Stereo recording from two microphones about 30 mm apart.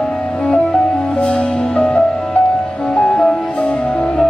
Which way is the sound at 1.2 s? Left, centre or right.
Left.